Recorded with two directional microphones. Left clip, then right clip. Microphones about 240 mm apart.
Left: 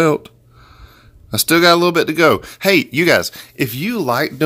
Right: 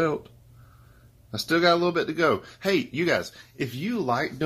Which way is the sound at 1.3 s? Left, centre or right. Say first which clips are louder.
Left 10 dB; left.